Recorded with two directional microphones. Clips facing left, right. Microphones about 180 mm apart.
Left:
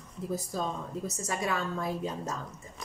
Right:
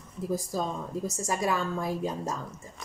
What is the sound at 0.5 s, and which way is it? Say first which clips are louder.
A woman's voice: right 2 dB; 40° right (ahead or behind).